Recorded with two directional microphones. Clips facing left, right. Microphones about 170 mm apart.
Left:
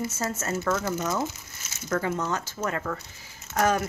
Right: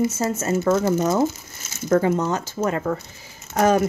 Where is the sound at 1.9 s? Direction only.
25° right (ahead or behind).